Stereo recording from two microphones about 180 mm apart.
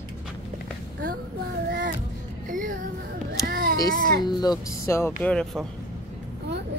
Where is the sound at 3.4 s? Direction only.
55° right (ahead or behind).